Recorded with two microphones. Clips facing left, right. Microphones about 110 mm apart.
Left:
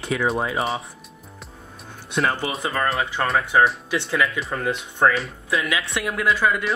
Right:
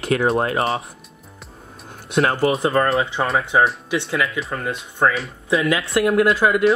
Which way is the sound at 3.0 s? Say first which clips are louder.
Right 4 dB; 20° right (ahead or behind).